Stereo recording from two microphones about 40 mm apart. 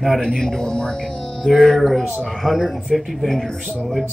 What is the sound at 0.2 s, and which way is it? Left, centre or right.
Speech, centre.